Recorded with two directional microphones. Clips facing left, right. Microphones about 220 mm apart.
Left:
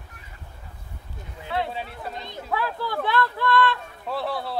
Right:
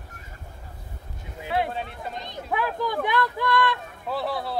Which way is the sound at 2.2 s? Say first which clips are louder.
Right 1 dB; 20° right (ahead or behind).